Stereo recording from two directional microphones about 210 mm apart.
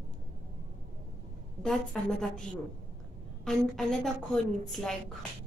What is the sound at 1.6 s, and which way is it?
Speech, 5° left (ahead or behind).